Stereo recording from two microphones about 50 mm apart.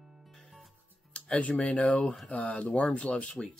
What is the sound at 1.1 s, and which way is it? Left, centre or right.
Music, left.